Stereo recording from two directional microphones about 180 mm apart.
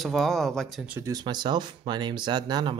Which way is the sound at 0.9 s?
20° right (ahead or behind).